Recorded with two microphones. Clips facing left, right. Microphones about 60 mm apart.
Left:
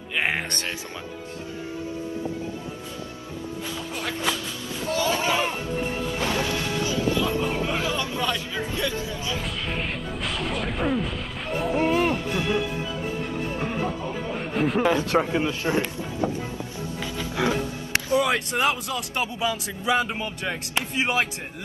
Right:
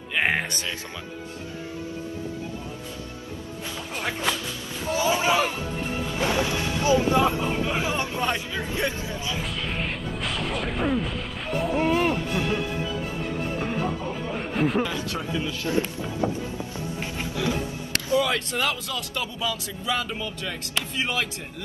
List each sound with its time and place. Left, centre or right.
0.1 s a man's voice: centre
3.9 s a sound: centre
4.9 s a sound: centre
6.1 s music: centre
7.4 s speech: centre
7.8 s speech: right
9.4 s a sound: centre
13.6 s speech: centre
14.8 s speech: left
15.3 s a man's voice: left
17.4 s a man's voice: left